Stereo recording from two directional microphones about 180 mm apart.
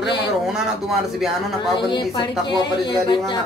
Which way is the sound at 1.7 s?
25° left (ahead or behind).